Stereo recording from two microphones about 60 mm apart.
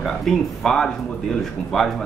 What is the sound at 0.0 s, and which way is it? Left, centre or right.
Speech, centre.